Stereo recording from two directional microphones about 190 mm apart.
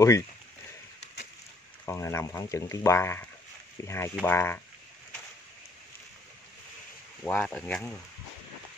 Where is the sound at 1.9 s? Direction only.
15° left (ahead or behind).